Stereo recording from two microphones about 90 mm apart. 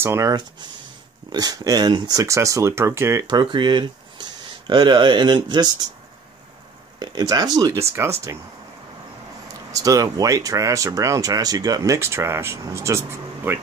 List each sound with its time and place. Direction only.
0.0 s speech: 30° right (ahead or behind)
0.3 s speech: 55° right (ahead or behind); by 3.3 s 30° right (ahead or behind)
3.3 s speech: 60° right (ahead or behind)
7.0 s speech: 50° right (ahead or behind)
7.7 s speech: 30° right (ahead or behind)
9.5 s speech: 40° right (ahead or behind)